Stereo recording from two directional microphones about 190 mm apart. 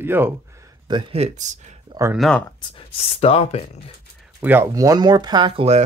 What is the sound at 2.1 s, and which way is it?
Speech, centre (ahead or behind).